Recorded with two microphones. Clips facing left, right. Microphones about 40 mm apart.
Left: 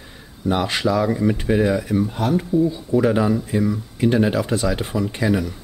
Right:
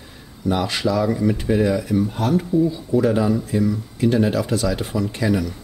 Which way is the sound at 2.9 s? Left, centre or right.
Centre.